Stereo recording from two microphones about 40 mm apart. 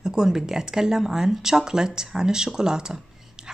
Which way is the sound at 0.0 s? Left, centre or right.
Centre.